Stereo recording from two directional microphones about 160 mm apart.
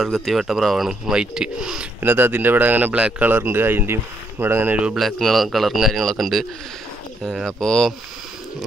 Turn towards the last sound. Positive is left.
turn(degrees=5)  # may be behind; listen again after turning